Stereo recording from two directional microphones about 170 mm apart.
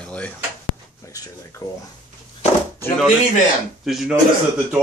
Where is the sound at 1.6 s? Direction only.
20° left (ahead or behind).